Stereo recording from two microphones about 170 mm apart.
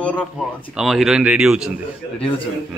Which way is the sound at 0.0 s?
10° left (ahead or behind).